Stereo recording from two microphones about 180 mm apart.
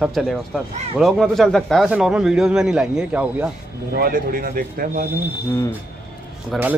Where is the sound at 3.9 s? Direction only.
55° right (ahead or behind).